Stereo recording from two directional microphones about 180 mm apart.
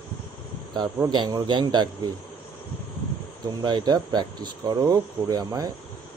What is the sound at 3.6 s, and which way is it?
Speech, 25° right (ahead or behind).